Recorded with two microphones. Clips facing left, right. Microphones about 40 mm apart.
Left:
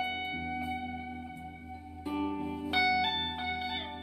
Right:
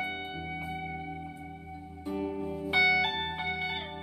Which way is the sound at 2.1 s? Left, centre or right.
Left.